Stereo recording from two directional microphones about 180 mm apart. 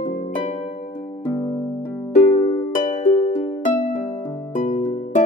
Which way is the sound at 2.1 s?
40° left (ahead or behind).